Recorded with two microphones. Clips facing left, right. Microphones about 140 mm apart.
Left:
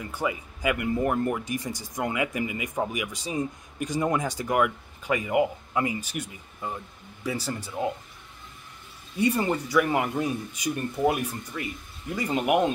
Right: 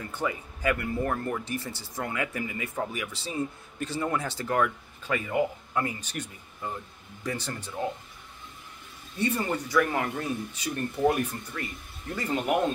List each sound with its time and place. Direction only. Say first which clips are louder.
0.0 s speech: left 2 dB; 10° left (ahead or behind)
9.1 s speech: left 4 dB; 10° left (ahead or behind)